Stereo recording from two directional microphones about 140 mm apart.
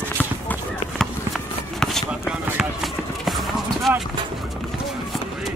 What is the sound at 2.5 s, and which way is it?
Run, centre (ahead or behind).